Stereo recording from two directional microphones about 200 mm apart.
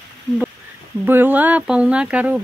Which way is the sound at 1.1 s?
10° right (ahead or behind).